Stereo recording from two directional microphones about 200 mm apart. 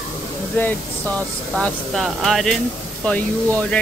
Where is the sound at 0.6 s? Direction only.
10° left (ahead or behind).